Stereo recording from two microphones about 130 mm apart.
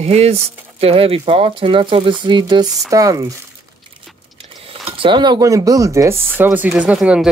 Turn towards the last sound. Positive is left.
turn(degrees=-5)  # may be behind; listen again after turning